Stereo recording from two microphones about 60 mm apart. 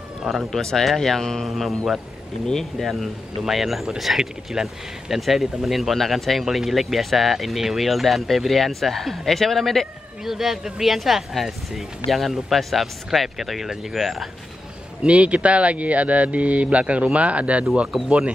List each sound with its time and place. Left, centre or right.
0.5 s a man's voice: centre
2.9 s a man's voice: centre
15.0 s speech: centre